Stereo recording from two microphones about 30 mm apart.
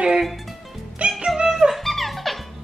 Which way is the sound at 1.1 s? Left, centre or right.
Centre.